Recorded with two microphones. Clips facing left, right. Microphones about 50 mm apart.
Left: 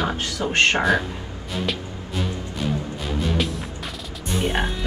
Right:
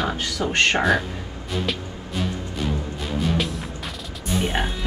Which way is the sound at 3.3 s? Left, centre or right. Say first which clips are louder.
Even; centre.